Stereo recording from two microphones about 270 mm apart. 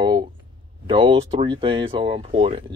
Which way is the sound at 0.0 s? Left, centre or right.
Centre.